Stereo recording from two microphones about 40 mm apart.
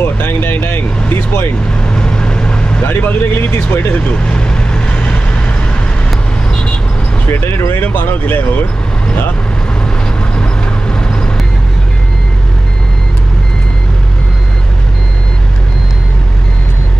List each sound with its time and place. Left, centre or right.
0.0 s vehicle: left
1.8 s vehicle: left
2.8 s speech: left
4.1 s vehicle: left
7.2 s speech: left
10.3 s vehicle: left